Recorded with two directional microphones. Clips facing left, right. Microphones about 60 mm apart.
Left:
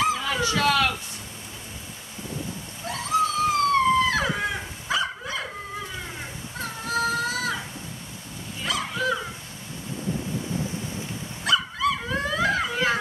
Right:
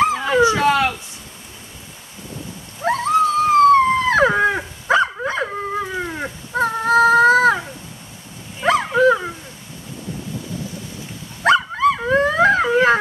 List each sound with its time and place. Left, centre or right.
0.0 s dog: right
2.8 s dog: right
8.6 s dog: right
11.4 s dog: right